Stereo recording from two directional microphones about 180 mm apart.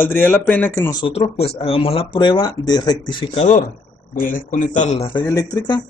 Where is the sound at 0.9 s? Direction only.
30° left (ahead or behind).